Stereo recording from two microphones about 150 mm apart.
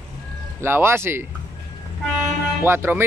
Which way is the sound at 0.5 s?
15° right (ahead or behind).